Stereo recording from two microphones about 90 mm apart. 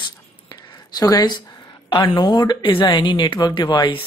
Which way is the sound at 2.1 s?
50° left (ahead or behind).